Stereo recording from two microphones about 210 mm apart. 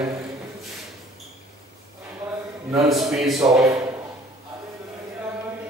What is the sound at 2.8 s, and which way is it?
Speech, centre (ahead or behind).